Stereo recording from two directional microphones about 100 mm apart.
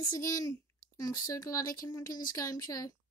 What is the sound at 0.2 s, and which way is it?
A woman's voice, 35° left (ahead or behind).